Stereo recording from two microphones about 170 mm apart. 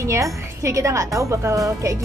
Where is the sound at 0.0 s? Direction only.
15° right (ahead or behind).